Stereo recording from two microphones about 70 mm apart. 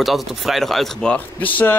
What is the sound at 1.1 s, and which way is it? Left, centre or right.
Speech, left.